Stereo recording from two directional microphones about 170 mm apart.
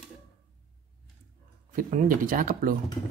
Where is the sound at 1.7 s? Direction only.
50° right (ahead or behind).